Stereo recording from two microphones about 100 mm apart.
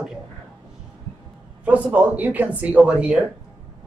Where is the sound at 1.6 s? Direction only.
15° right (ahead or behind).